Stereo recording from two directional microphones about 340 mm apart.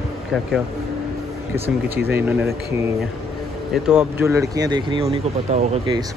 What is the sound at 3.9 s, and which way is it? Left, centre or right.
Speech, centre.